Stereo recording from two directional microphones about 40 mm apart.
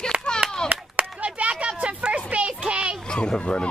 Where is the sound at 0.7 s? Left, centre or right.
Right.